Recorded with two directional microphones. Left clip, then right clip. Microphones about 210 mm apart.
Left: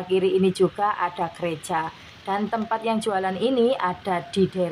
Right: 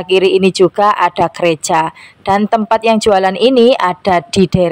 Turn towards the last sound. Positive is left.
turn(degrees=-45)  # may be behind; listen again after turning